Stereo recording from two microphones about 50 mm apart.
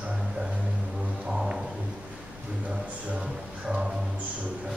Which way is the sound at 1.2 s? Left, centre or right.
Centre.